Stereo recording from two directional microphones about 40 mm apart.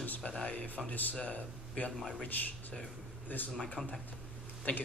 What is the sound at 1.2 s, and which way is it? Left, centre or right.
Speech, left.